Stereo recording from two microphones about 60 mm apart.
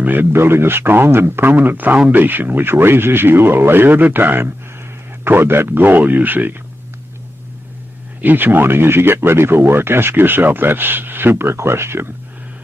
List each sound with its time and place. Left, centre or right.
0.0 s speech: right
8.2 s speech: right